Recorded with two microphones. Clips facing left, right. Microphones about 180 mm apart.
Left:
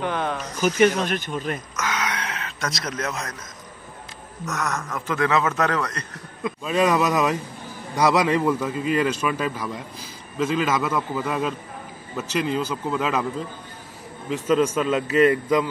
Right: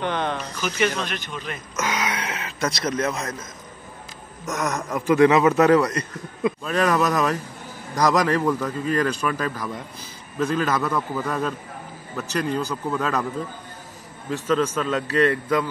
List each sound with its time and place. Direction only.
0.0 s speech: 5° left (ahead or behind)
0.6 s speech: 45° left (ahead or behind)
1.8 s a sound: 20° right (ahead or behind)
2.0 s a sound: 5° right (ahead or behind)
4.5 s a man's voice: 15° right (ahead or behind)
6.6 s speech: 5° left (ahead or behind)
12.5 s speech: 10° left (ahead or behind)
14.8 s speech: 10° left (ahead or behind)